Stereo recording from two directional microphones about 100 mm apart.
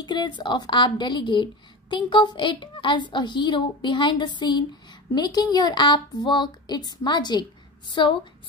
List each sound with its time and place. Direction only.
0.0 s a woman's voice: 50° left (ahead or behind)